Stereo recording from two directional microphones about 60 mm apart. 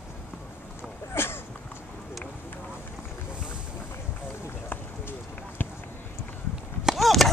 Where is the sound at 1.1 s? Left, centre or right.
Left.